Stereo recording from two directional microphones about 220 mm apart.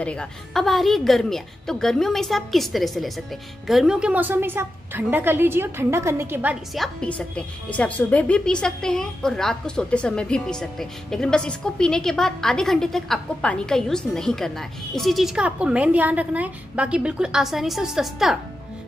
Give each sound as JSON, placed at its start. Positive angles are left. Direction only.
{"t": 0.0, "sound": "a woman's voice", "side_deg": 5}